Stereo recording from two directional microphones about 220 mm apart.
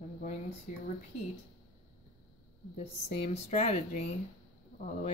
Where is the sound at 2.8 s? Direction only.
30° left (ahead or behind).